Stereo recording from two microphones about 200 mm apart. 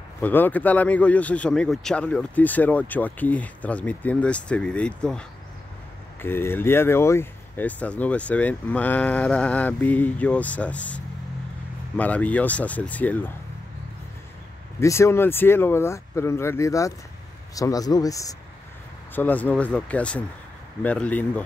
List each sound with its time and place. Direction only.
0.2 s speech: 10° left (ahead or behind)
6.2 s speech: 10° left (ahead or behind)
12.0 s speech: 5° left (ahead or behind)
14.8 s speech: 15° left (ahead or behind)